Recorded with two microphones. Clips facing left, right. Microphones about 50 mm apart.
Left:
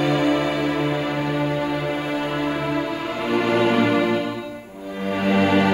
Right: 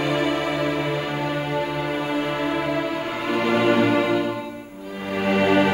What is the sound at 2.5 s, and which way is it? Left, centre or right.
Music, right.